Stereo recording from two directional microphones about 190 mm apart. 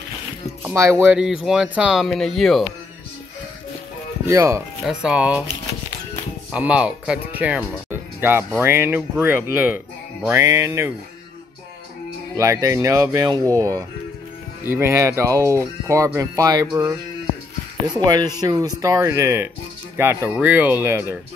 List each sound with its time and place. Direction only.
0.6 s speech: 15° right (ahead or behind)
4.3 s speech: 15° right (ahead or behind)
4.8 s speech: 5° right (ahead or behind)
6.5 s speech: 5° right (ahead or behind)
12.4 s speech: 15° right (ahead or behind)